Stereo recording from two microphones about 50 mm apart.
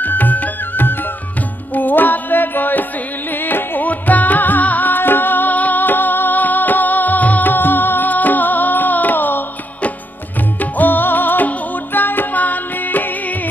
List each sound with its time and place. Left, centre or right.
0.0 s music: left
10.6 s music: left